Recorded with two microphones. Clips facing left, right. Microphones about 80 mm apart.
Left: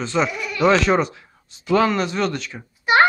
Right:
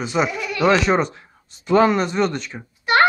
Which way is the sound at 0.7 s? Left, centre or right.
Centre.